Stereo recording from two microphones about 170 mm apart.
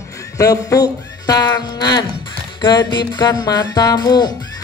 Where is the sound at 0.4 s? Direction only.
20° left (ahead or behind).